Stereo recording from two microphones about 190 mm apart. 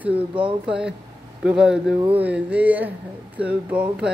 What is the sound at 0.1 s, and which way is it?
Speech, 25° right (ahead or behind).